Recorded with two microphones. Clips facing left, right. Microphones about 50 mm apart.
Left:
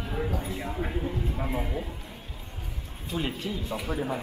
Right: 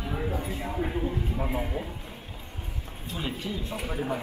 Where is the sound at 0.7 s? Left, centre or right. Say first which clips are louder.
Right 3 dB; centre.